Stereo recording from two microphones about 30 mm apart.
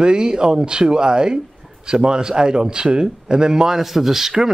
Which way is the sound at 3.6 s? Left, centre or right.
Centre.